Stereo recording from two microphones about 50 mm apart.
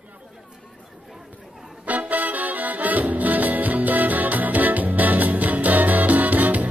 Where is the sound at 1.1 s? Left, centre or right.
Centre.